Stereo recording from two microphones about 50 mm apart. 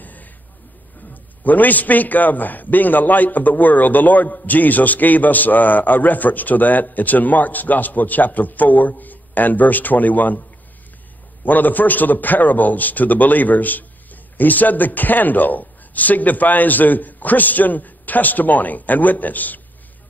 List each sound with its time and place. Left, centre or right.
0.0 s a sound: left
1.1 s a man's voice: left
11.4 s a man's voice: left